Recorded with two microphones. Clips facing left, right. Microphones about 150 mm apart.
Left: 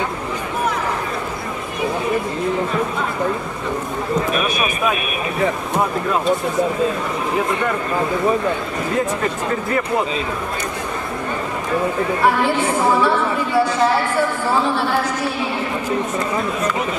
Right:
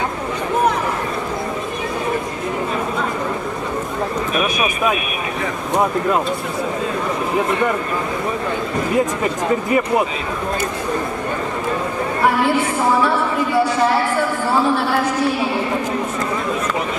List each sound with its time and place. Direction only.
8.9 s speech: 15° right (ahead or behind)